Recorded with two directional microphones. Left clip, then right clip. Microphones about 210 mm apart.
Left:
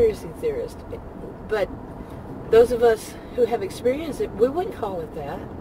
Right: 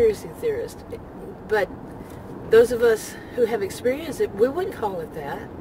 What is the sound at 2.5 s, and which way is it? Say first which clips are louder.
Speech: even; 25° right (ahead or behind).